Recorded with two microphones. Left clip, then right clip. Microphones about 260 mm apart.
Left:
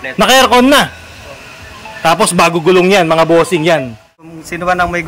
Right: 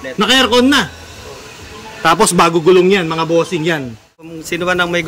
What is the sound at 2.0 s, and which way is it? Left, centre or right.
A man's voice, centre.